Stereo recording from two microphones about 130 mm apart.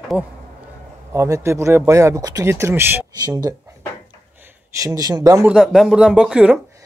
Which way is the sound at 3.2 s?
30° right (ahead or behind).